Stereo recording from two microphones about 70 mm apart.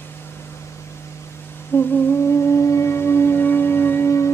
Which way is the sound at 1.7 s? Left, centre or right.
Left.